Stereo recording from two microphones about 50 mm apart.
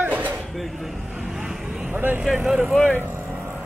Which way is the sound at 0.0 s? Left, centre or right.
Right.